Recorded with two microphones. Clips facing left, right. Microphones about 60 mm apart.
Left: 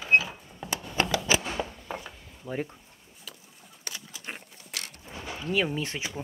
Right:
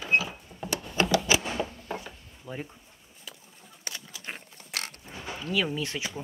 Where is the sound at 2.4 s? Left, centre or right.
Left.